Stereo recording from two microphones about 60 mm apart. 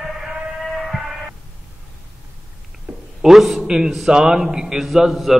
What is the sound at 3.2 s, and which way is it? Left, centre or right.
A man's voice, centre.